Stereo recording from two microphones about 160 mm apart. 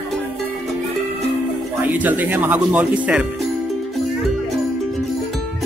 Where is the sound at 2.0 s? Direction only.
10° right (ahead or behind).